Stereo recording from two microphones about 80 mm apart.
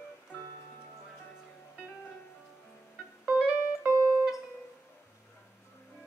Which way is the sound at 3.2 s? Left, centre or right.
Centre.